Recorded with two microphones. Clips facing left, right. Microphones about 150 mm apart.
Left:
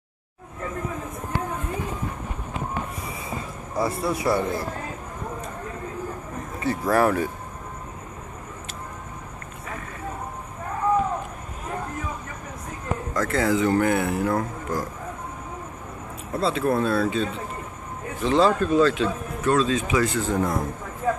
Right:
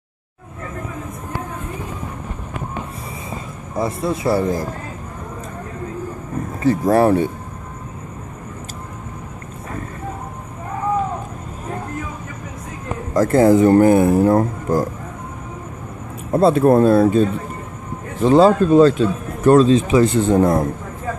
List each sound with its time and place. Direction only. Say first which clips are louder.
3.7 s speech: right 3 dB; 20° right (ahead or behind)
6.6 s speech: right 6 dB; 35° right (ahead or behind)
13.1 s speech: right 11 dB; 40° right (ahead or behind)
16.3 s speech: right 10 dB; 50° right (ahead or behind)
18.2 s speech: right 8 dB; 35° right (ahead or behind)
19.7 s speech: right 9 dB; 30° right (ahead or behind)
20.3 s speech: right 10 dB; 45° right (ahead or behind)